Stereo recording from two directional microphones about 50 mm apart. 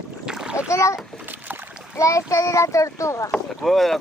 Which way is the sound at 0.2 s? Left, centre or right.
Centre.